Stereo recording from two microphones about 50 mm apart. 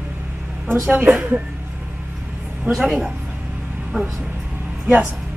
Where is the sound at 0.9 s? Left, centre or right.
Right.